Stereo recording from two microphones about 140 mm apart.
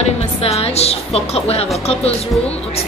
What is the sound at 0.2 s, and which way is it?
A woman's voice, 45° left (ahead or behind).